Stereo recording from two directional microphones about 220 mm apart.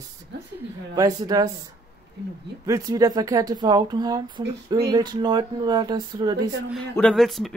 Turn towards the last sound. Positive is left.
turn(degrees=0)  # may be behind; listen again after turning